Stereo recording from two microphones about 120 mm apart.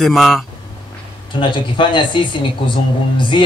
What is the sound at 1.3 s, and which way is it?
Speech, 40° left (ahead or behind).